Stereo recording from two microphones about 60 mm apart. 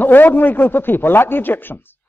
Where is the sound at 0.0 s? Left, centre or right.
Left.